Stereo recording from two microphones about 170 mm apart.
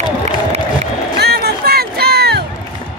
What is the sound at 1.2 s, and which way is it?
Music, 70° right (ahead or behind).